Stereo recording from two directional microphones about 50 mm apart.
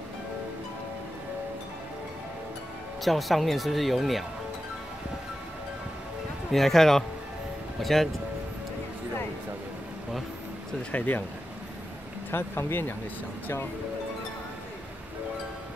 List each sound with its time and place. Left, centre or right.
3.0 s speech: centre
6.5 s speech: centre
10.9 s speech: left
12.3 s speech: left